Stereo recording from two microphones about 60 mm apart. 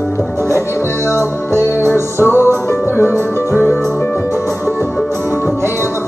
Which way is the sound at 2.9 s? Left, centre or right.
Left.